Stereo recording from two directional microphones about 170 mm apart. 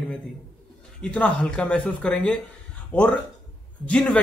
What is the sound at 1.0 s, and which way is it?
A man's voice, 5° left (ahead or behind).